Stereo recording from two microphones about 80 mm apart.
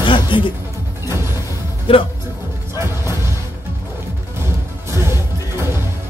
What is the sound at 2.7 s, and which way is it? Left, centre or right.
Music, right.